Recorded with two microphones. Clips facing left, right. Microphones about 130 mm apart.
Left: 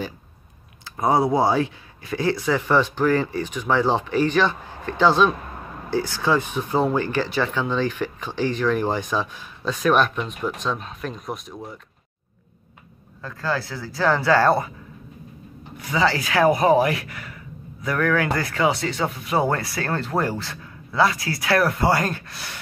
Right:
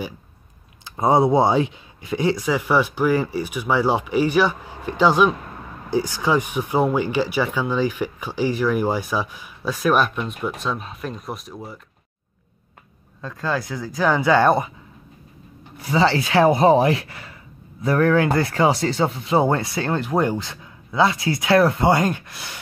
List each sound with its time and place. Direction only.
0.8 s speech: 25° right (ahead or behind); by 11.8 s 5° right (ahead or behind)
13.2 s speech: 20° right (ahead or behind)
15.8 s speech: 30° right (ahead or behind)